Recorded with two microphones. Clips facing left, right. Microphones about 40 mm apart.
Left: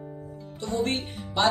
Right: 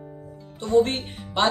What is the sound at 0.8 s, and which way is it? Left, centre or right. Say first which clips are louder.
Speech: right 8 dB; right.